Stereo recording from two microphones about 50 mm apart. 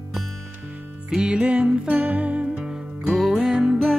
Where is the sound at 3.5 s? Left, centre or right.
Centre.